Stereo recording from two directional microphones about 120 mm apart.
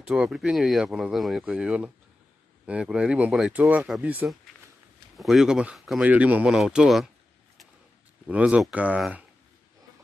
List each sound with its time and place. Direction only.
0.0 s speech: 5° right (ahead or behind)
5.1 s speech: centre (ahead or behind)
8.3 s speech: 10° right (ahead or behind)